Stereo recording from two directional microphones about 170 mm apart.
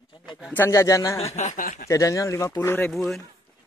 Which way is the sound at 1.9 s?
20° left (ahead or behind).